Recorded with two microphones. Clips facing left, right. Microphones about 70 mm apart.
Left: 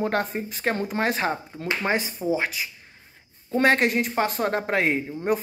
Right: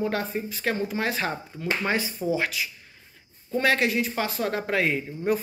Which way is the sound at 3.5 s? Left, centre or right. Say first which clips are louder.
Left 3 dB; left.